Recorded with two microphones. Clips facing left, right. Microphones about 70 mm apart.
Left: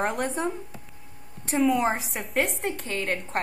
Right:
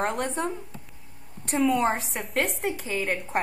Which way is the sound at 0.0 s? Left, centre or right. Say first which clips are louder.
Even; centre.